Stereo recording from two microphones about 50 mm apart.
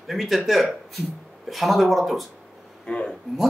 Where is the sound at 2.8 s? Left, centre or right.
Centre.